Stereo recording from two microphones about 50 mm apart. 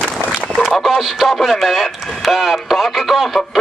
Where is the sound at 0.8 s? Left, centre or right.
Centre.